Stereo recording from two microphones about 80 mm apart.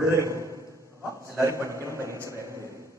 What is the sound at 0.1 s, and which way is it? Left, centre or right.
A man's voice, right.